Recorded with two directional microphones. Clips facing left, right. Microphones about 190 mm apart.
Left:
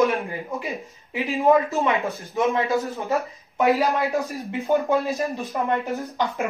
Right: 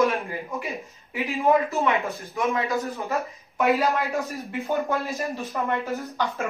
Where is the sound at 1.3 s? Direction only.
15° left (ahead or behind).